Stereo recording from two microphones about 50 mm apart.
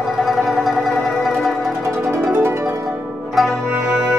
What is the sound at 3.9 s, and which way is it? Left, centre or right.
Music, centre.